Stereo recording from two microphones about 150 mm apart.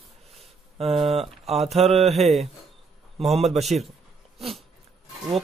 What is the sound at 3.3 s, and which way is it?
Speech, 45° right (ahead or behind).